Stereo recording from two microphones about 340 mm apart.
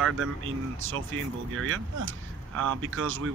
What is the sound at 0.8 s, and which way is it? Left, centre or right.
Speech, right.